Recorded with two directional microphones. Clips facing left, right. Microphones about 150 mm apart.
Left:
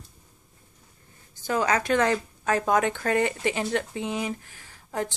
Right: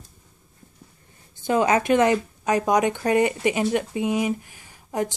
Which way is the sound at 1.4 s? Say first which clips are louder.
Right 5 dB; 20° right (ahead or behind).